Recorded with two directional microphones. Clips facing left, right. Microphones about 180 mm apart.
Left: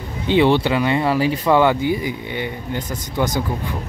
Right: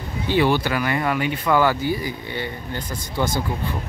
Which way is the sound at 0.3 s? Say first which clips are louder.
Left 4 dB; 25° left (ahead or behind).